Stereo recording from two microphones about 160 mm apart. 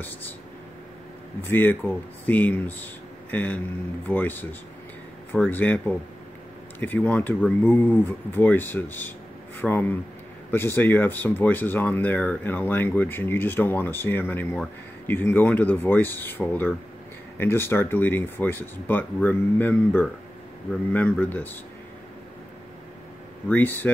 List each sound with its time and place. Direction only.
1.4 s speech: 15° left (ahead or behind)
23.5 s speech: 10° left (ahead or behind)